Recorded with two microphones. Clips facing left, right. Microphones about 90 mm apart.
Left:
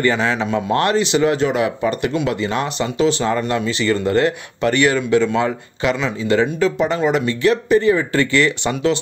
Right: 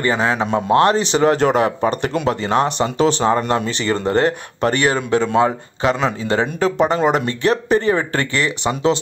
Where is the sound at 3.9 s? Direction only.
30° right (ahead or behind).